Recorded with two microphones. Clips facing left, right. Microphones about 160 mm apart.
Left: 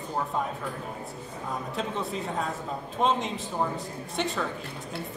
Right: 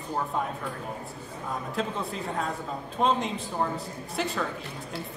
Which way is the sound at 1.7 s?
Centre (ahead or behind).